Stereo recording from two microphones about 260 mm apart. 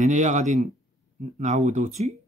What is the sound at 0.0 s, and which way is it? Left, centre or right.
Speech, right.